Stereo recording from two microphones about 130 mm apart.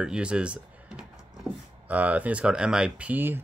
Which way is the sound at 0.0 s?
5° right (ahead or behind).